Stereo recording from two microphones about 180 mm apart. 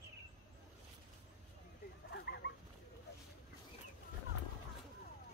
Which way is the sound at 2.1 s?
65° left (ahead or behind).